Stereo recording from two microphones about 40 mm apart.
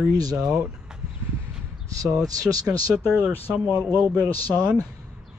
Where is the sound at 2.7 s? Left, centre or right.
Right.